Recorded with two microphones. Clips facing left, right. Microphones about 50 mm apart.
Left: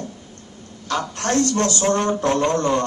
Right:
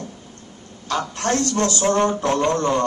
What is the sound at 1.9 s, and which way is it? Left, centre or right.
Speech, right.